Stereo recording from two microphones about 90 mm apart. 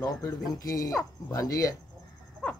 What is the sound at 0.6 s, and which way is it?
Speech, 40° left (ahead or behind).